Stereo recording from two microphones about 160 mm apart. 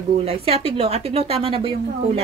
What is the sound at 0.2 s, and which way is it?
A woman's voice, 35° right (ahead or behind).